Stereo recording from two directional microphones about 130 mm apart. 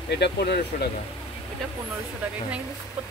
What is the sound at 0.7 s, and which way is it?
Speech, 90° left.